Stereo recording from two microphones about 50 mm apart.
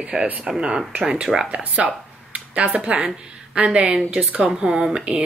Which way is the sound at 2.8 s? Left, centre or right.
Right.